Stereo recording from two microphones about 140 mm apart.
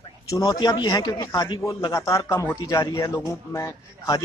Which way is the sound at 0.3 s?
25° left (ahead or behind).